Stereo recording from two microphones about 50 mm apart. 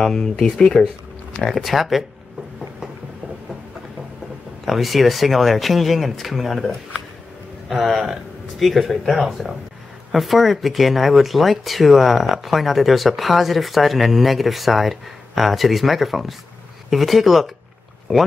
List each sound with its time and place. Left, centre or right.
0.0 s speech: centre
1.4 s speech: centre
4.6 s speech: centre